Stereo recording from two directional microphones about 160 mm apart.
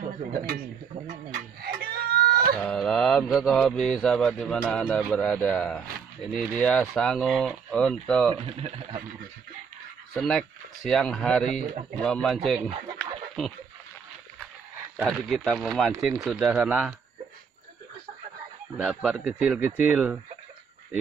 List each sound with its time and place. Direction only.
1.3 s a sound: 75° right (ahead or behind)
2.5 s mantra: 5° left (ahead or behind)
5.1 s speech: 5° left (ahead or behind)
8.4 s speech: 35° right (ahead or behind)
10.1 s speech: centre (ahead or behind)
15.0 s speech: centre (ahead or behind)
18.8 s a man's voice: 5° right (ahead or behind)